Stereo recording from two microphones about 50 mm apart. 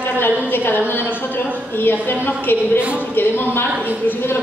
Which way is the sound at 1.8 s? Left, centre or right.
Left.